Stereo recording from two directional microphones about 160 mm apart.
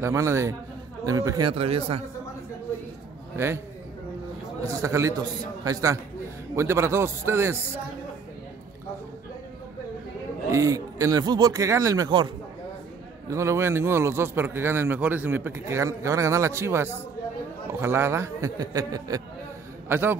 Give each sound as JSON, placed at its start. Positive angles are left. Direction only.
{"t": 0.0, "sound": "a man's voice", "side_deg": -15}
{"t": 1.5, "sound": "speech", "side_deg": -35}
{"t": 3.3, "sound": "a man's voice", "side_deg": -15}
{"t": 4.6, "sound": "a man's voice", "side_deg": -20}
{"t": 10.5, "sound": "speech", "side_deg": -20}
{"t": 13.3, "sound": "a man's voice", "side_deg": -15}